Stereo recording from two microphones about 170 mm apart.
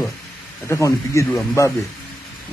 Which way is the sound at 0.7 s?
20° left (ahead or behind).